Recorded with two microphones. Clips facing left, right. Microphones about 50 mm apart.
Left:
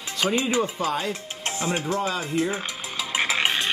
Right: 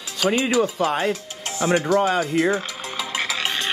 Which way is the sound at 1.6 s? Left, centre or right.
Right.